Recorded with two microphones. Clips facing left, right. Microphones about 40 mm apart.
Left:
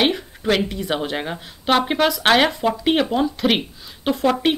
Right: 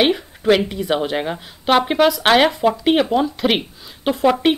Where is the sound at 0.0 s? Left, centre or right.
Centre.